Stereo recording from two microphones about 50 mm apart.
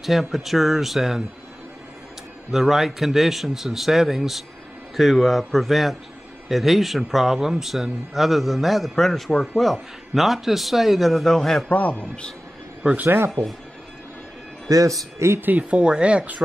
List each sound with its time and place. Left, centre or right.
0.0 s speech: centre
2.5 s speech: centre
11.7 s a man's voice: left
14.9 s speech: right
15.7 s speech: right